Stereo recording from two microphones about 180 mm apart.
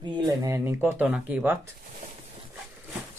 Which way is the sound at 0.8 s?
5° right (ahead or behind).